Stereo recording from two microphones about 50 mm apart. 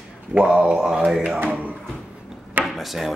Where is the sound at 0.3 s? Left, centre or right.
Right.